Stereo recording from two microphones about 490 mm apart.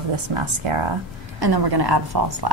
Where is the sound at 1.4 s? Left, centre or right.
Right.